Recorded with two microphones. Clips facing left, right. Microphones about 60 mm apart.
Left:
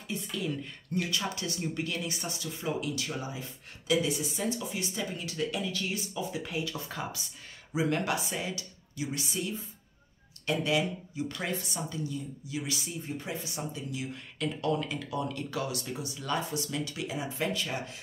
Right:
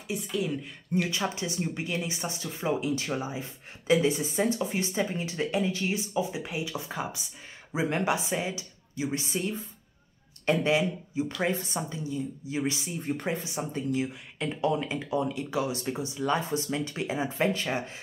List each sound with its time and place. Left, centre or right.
0.1 s speech: centre
1.0 s speech: right